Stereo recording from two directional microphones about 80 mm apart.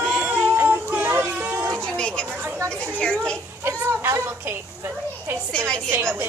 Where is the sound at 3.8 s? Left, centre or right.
Right.